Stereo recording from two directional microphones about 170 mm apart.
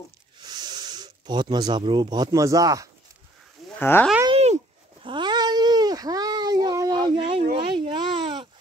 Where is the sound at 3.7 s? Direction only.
10° left (ahead or behind).